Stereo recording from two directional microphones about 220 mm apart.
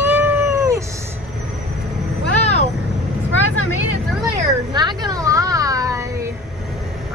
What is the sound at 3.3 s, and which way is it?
Vehicle, 70° left (ahead or behind).